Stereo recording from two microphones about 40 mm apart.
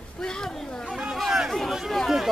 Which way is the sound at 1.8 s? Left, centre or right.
Centre.